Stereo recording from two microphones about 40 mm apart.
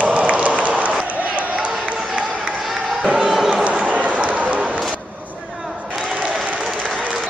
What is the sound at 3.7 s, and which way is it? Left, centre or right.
Run, right.